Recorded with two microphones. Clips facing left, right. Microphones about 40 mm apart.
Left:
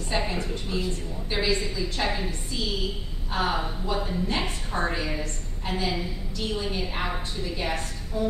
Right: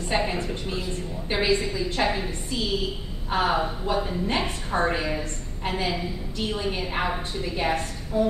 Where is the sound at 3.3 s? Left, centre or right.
Centre.